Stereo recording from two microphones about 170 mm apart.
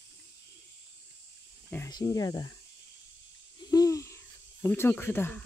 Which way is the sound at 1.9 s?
20° left (ahead or behind).